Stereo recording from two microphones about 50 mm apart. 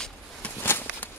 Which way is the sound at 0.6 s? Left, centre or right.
Left.